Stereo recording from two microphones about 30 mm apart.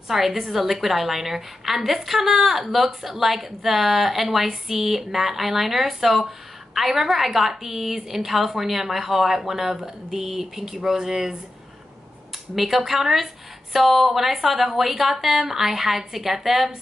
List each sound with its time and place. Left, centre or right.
0.1 s a woman's voice: centre
12.5 s a woman's voice: centre